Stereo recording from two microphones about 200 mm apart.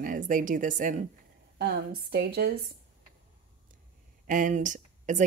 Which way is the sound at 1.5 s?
50° right (ahead or behind).